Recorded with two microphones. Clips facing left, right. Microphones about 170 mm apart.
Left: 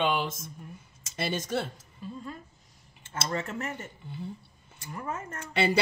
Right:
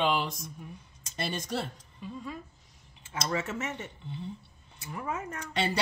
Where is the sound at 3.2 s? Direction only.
Centre (ahead or behind).